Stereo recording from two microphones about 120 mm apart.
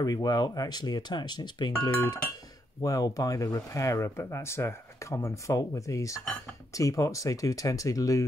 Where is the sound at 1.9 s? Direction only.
25° left (ahead or behind).